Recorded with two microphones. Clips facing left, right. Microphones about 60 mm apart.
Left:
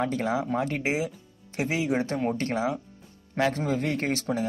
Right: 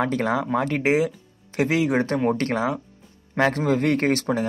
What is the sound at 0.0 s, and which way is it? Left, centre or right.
Speech, right.